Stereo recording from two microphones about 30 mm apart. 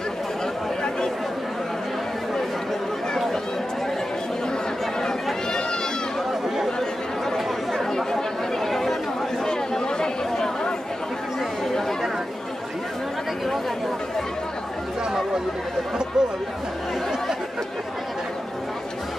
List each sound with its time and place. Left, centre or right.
7.3 s chatter: centre
9.5 s chatter: left
16.1 s chatter: centre